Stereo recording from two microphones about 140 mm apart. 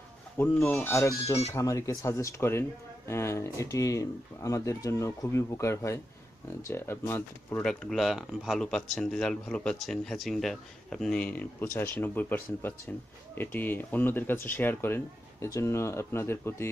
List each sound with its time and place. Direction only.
0.4 s speech: 20° left (ahead or behind)